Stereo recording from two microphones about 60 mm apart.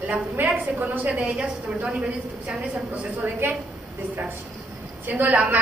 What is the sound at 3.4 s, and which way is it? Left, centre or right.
Speech, right.